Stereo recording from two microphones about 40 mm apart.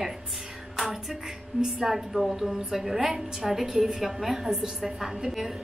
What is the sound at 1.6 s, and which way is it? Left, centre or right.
A woman's voice, centre.